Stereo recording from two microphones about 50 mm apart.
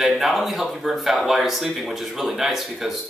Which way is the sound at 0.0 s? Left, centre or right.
Centre.